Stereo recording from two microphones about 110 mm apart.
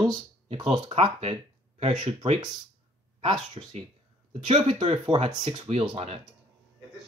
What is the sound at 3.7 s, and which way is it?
Speech, 80° right.